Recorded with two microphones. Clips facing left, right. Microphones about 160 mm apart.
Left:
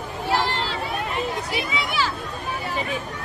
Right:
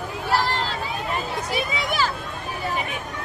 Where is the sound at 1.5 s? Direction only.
45° right (ahead or behind).